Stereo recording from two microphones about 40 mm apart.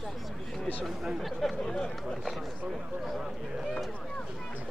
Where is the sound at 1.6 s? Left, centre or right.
Centre.